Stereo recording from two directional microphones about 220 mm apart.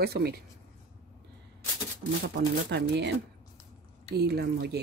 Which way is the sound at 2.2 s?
50° right (ahead or behind).